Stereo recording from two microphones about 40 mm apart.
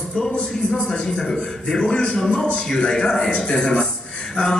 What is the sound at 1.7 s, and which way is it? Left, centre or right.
Speech, centre.